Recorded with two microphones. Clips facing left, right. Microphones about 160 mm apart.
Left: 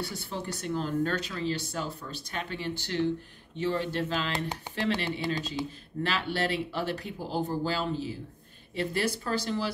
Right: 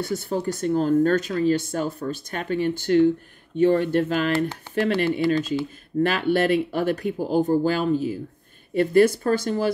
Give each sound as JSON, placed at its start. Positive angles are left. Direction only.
{"t": 0.0, "sound": "speech", "side_deg": -45}